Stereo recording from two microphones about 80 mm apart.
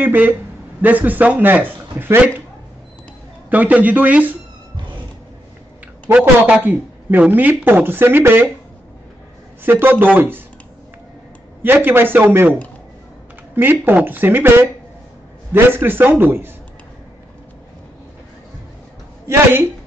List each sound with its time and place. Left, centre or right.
0.0 s speech: right
3.4 s speech: right
6.1 s speech: centre
9.6 s speech: right
11.6 s speech: right
13.6 s speech: right
19.2 s a woman's voice: right